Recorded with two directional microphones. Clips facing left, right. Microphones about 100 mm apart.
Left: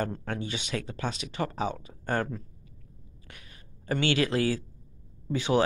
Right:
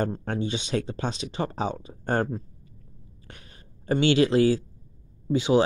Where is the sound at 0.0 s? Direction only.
30° right (ahead or behind).